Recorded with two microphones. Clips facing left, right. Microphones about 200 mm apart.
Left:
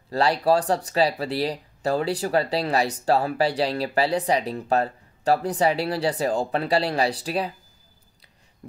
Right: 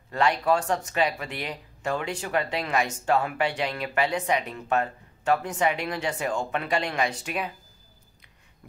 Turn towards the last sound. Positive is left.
turn(degrees=35)  # may be behind; listen again after turning